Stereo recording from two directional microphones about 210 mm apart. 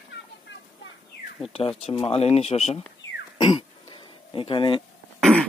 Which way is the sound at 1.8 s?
25° left (ahead or behind).